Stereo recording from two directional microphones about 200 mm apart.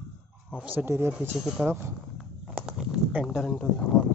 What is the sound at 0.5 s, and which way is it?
Speech, 10° right (ahead or behind).